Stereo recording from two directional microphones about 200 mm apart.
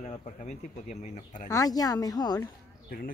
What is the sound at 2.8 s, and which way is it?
Speech, 45° left (ahead or behind).